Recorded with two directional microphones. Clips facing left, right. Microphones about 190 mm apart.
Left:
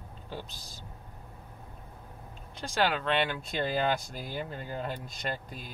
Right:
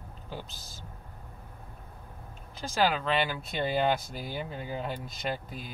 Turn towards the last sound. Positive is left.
turn(degrees=-5)  # may be behind; listen again after turning